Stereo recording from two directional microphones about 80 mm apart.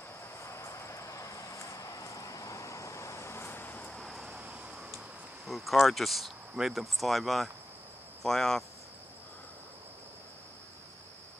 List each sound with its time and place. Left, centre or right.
0.4 s vehicle: left
3.9 s vehicle: centre
4.3 s cricket: centre
8.2 s speech: centre